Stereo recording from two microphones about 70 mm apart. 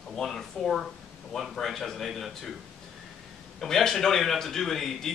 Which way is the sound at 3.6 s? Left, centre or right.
Centre.